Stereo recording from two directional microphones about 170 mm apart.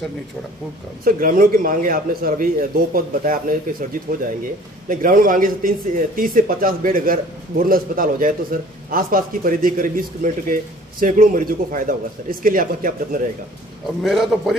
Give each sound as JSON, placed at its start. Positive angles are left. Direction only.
{"t": 1.0, "sound": "speech", "side_deg": -55}
{"t": 14.0, "sound": "a man's voice", "side_deg": 0}